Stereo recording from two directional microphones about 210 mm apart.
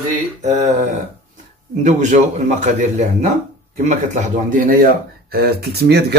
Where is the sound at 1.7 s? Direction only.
35° right (ahead or behind).